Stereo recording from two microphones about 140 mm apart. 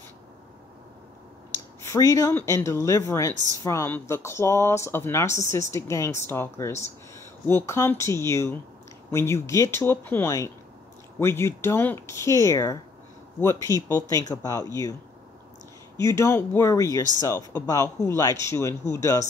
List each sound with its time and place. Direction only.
1.9 s speech: 25° left (ahead or behind)
16.0 s speech: 20° left (ahead or behind)